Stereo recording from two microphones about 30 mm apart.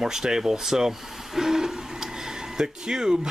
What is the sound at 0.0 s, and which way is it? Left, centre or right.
Speech, centre.